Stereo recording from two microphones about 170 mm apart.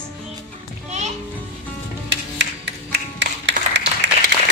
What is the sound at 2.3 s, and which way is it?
Music, 90° right.